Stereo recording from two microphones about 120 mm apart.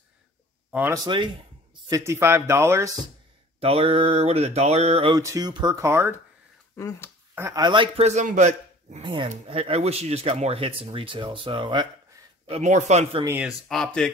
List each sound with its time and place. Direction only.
0.7 s speech: 15° right (ahead or behind)
0.9 s speech: 40° right (ahead or behind)
1.9 s speech: 25° right (ahead or behind)
3.5 s speech: 55° right (ahead or behind)
5.1 s speech: 30° right (ahead or behind)
5.8 s speech: 20° right (ahead or behind)
6.8 s speech: 25° left (ahead or behind)
7.5 s speech: 40° right (ahead or behind)
8.0 s a man's voice: 80° right
9.0 s speech: 45° right (ahead or behind)
9.5 s speech: 55° right (ahead or behind)
12.4 s speech: 70° right (ahead or behind)
13.5 s speech: 5° left (ahead or behind)